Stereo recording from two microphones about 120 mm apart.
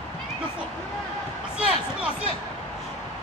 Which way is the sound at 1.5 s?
10° right (ahead or behind).